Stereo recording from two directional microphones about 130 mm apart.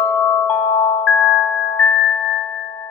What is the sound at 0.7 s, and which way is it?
Music, 45° left (ahead or behind).